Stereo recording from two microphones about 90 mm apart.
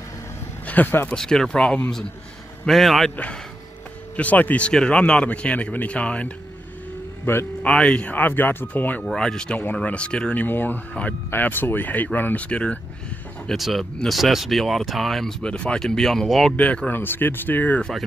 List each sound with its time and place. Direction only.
0.7 s speech: 20° left (ahead or behind)
1.1 s speech: 5° left (ahead or behind)
4.2 s speech: 15° left (ahead or behind)
7.6 s speech: 10° left (ahead or behind)
9.0 s speech: 5° left (ahead or behind)
13.5 s speech: centre (ahead or behind)
16.5 s speech: 15° left (ahead or behind)